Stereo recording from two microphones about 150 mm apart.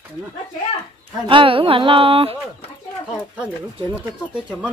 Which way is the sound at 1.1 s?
35° right (ahead or behind).